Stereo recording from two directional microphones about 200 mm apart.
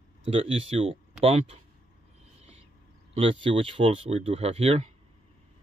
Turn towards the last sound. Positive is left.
turn(degrees=-30)  # may be behind; listen again after turning